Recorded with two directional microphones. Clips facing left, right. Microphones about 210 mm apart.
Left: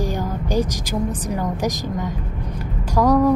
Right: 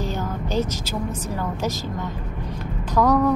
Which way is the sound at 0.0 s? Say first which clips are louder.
Left 3 dB; 15° left (ahead or behind).